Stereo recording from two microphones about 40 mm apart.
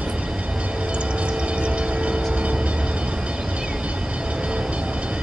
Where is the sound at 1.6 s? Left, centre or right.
Right.